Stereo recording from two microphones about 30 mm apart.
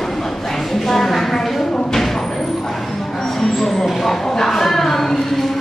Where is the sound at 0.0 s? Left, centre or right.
Centre.